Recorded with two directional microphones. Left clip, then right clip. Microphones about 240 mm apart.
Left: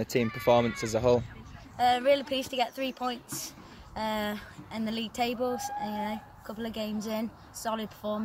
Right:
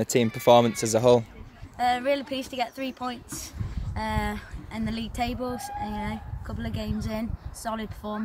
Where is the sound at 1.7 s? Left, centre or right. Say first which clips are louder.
Even; centre.